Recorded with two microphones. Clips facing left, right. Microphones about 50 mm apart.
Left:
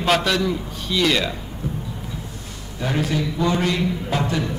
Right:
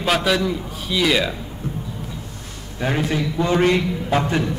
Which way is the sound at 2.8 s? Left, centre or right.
Right.